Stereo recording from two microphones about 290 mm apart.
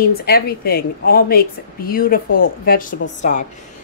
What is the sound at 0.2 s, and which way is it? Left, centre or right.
A woman's voice, left.